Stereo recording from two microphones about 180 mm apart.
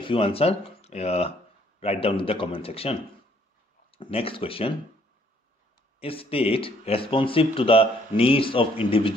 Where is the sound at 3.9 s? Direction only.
30° left (ahead or behind).